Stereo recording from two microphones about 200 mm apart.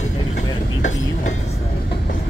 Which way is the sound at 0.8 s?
35° left (ahead or behind).